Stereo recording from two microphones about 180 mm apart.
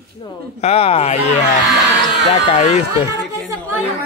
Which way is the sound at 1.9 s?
75° right (ahead or behind).